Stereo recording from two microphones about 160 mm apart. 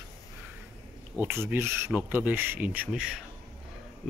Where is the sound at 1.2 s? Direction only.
15° right (ahead or behind).